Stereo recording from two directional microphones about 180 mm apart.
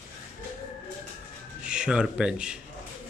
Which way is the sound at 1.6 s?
5° right (ahead or behind).